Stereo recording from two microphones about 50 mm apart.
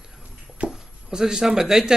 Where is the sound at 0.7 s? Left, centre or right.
Centre.